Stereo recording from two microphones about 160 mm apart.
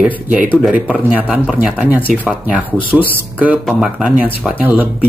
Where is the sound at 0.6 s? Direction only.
5° right (ahead or behind).